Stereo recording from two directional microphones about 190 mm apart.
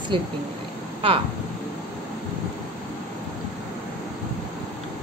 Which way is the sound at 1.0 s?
30° right (ahead or behind).